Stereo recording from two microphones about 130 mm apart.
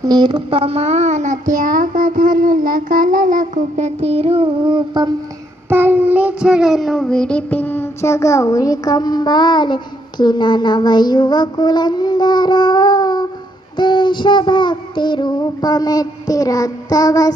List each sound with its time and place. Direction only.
0.0 s a child's voice: 35° right (ahead or behind)
5.7 s child singing: 15° right (ahead or behind); by 17.3 s 30° left (ahead or behind)